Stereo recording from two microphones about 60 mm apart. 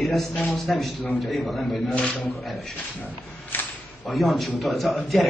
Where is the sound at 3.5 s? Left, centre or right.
Left.